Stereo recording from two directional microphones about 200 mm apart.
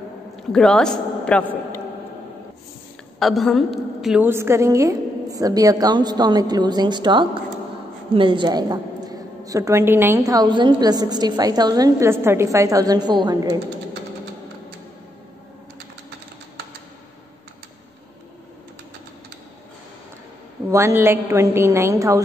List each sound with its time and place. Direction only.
0.5 s a man's voice: 5° left (ahead or behind)
3.2 s a woman's voice: centre (ahead or behind); by 13.6 s 20° right (ahead or behind)
20.7 s a woman's voice: 15° right (ahead or behind)